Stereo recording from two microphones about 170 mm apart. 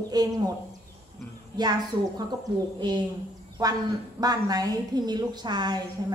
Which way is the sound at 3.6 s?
20° right (ahead or behind).